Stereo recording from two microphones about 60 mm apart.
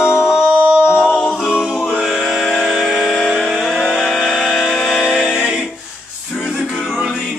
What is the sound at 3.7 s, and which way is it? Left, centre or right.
Vehicle, centre.